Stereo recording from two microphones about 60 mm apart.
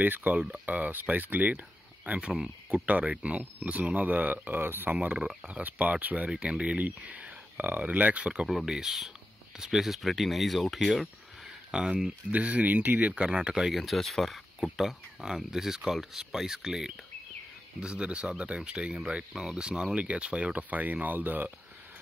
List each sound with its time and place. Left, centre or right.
0.0 s speech: right
2.7 s speech: right
5.0 s speech: right
5.6 s speech: right
6.3 s speech: centre
8.5 s speech: centre
11.7 s speech: centre
12.3 s speech: right